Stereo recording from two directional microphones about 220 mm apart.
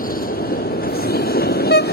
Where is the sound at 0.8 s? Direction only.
45° left (ahead or behind).